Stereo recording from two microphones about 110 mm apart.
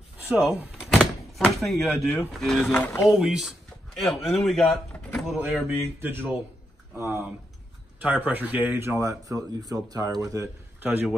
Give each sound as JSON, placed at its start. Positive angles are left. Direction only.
{"t": 0.2, "sound": "a sound", "side_deg": -15}
{"t": 0.9, "sound": "door", "side_deg": 5}
{"t": 2.1, "sound": "speech", "side_deg": 5}
{"t": 3.0, "sound": "speech", "side_deg": -5}
{"t": 5.9, "sound": "speech", "side_deg": -20}
{"t": 10.8, "sound": "speech", "side_deg": -15}